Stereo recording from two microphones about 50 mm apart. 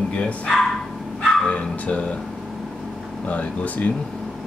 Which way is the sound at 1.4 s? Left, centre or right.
Left.